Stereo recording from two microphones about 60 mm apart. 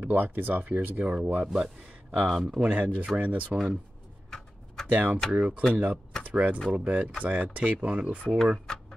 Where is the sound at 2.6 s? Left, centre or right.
Right.